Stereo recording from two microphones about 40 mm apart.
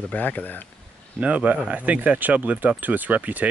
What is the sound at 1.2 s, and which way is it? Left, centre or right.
Speech, right.